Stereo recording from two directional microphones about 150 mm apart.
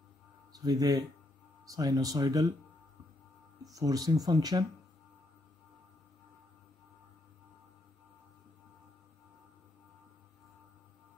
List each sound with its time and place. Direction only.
0.5 s speech: 25° right (ahead or behind)
3.7 s speech: 25° right (ahead or behind)